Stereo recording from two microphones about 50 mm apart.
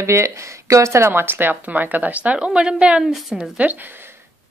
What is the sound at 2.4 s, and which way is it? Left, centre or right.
Speech, centre.